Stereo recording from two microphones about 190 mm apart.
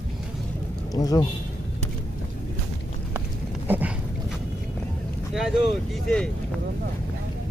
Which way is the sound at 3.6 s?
10° right (ahead or behind).